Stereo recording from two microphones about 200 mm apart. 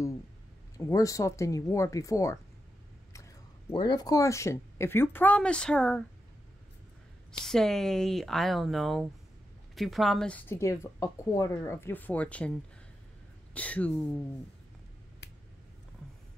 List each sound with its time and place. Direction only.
0.7 s speech: 15° left (ahead or behind)
3.1 s a sound: 15° left (ahead or behind)
3.7 s speech: 20° left (ahead or behind); by 6.0 s 5° left (ahead or behind)
7.4 s speech: centre (ahead or behind)
13.6 s speech: 5° left (ahead or behind)
15.2 s a sound: 60° left (ahead or behind)